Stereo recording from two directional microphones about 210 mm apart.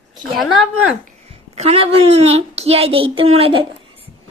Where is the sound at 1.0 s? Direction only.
30° right (ahead or behind).